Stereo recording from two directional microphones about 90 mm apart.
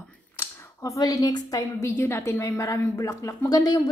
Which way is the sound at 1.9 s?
25° left (ahead or behind).